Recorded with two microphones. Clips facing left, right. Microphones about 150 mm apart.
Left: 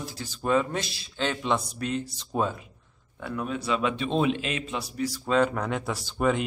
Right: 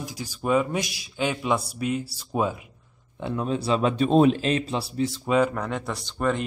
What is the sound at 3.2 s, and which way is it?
A man's voice, 25° right (ahead or behind).